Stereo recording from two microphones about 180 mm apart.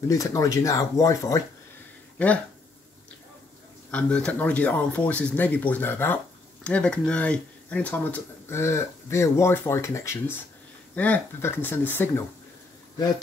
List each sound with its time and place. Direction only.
0.1 s speech: 20° left (ahead or behind)
2.1 s speech: 5° left (ahead or behind)
3.9 s speech: 5° left (ahead or behind)